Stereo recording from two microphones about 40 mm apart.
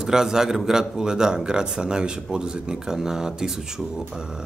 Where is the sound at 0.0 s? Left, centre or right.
Centre.